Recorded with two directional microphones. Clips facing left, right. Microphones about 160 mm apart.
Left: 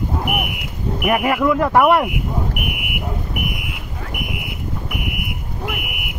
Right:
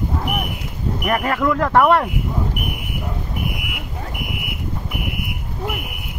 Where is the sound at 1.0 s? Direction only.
10° left (ahead or behind).